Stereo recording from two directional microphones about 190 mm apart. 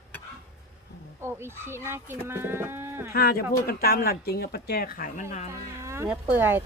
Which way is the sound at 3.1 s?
55° left (ahead or behind).